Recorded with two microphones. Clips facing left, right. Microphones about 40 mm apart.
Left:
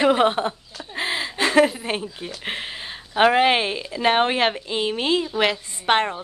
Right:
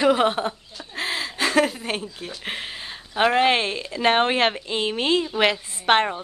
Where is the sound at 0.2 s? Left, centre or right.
Centre.